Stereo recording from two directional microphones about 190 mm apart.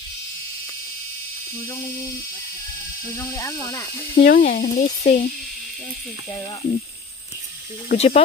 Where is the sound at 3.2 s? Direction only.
20° left (ahead or behind).